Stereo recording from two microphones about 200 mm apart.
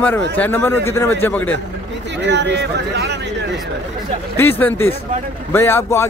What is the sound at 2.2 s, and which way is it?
Speech, 60° right (ahead or behind).